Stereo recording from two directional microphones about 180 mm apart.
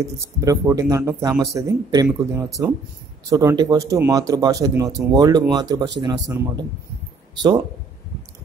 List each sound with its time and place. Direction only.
0.0 s speech: 15° right (ahead or behind)